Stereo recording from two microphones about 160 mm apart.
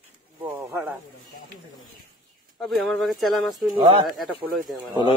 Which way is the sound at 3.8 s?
35° right (ahead or behind).